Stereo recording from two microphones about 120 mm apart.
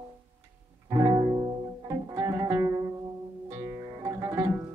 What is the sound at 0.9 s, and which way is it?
Music, 30° right (ahead or behind).